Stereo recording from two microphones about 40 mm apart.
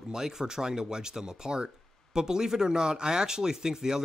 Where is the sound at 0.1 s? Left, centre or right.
Centre.